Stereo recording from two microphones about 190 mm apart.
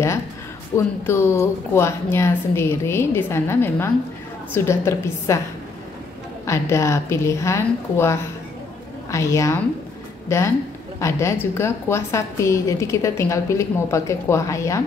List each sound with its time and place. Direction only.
0.7 s a woman's voice: 15° left (ahead or behind)
6.4 s a woman's voice: 15° left (ahead or behind)